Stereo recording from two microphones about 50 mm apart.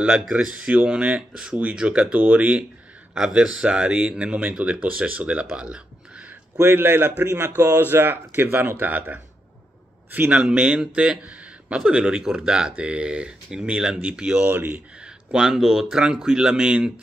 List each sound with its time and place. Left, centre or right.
0.3 s speech: centre
3.2 s speech: centre
6.6 s a man's voice: right
10.3 s speech: right
14.5 s speech: right
15.3 s speech: centre